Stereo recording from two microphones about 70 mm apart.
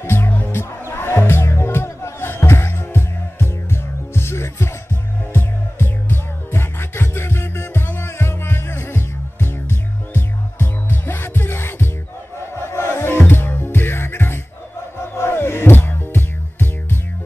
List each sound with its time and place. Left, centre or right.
0.0 s music: left
0.3 s music: left
0.6 s music: left